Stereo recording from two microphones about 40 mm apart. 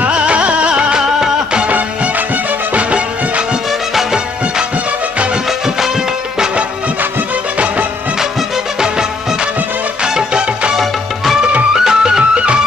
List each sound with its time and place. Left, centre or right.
0.1 s music: right
2.7 s music: right
10.0 s music: centre